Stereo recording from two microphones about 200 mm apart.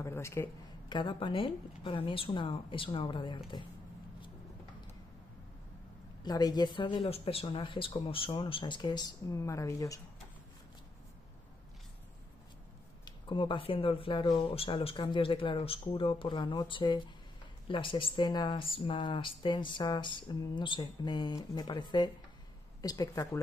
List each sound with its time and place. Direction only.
0.0 s speech: 15° left (ahead or behind)
6.2 s speech: 20° left (ahead or behind)
13.0 s speech: 25° left (ahead or behind)